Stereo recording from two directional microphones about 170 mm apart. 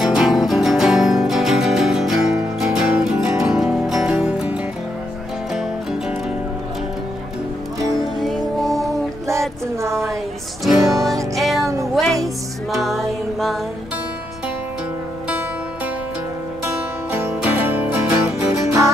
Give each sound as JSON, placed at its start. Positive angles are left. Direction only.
{"t": 0.0, "sound": "music", "side_deg": 0}
{"t": 8.0, "sound": "music", "side_deg": 0}
{"t": 9.8, "sound": "a sound", "side_deg": -15}
{"t": 10.8, "sound": "music", "side_deg": -20}
{"t": 11.3, "sound": "music", "side_deg": 0}
{"t": 12.7, "sound": "music", "side_deg": 0}
{"t": 16.6, "sound": "music", "side_deg": -15}